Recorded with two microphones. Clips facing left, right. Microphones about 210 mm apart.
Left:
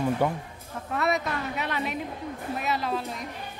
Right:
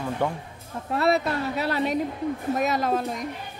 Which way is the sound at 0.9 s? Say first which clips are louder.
Right 5 dB; 30° right (ahead or behind).